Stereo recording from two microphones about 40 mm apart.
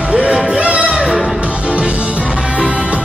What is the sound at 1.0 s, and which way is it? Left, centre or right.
Music, centre.